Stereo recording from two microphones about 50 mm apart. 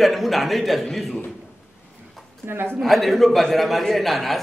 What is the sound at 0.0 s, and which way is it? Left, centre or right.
A man's voice, centre.